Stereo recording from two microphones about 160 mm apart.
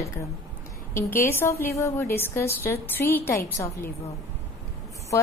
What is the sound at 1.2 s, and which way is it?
A woman's voice, 15° left (ahead or behind).